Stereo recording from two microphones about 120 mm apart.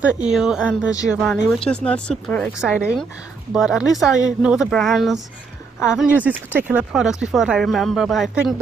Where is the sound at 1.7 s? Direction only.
10° left (ahead or behind).